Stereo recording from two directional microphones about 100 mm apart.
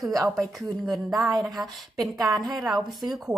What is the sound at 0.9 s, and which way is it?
Speech, centre (ahead or behind).